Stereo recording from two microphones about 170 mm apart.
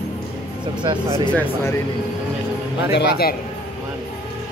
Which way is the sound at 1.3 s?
15° left (ahead or behind).